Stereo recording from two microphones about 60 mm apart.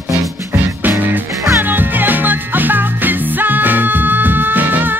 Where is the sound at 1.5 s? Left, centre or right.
Right.